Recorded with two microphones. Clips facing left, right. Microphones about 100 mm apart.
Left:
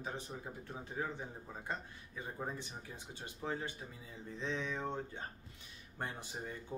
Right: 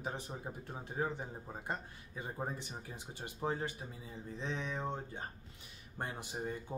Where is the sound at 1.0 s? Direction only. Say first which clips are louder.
Right 4 dB; 30° right (ahead or behind).